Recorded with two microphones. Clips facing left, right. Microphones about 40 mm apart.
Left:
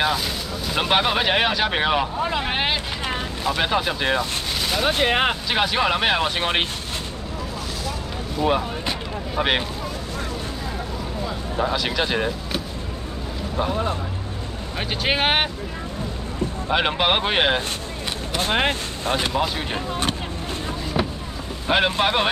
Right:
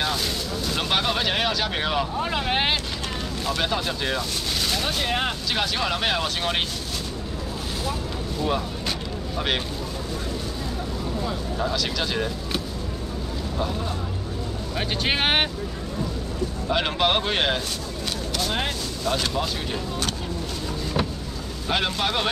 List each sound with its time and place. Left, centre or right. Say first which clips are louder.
0.7 s speech: left 5 dB; left
2.5 s speech: even; centre
3.4 s speech: left 4 dB; left
4.6 s vehicle: left 3 dB; centre
4.8 s speech: left 10 dB; left
5.5 s speech: left 4 dB; left
8.4 s speech: left 5 dB; left
11.5 s speech: left 5 dB; left
13.6 s speech: left 6 dB; left
14.8 s speech: left 2 dB; centre
16.6 s speech: left 2 dB; left
18.4 s speech: left 7 dB; left
21.6 s speech: left 5 dB; left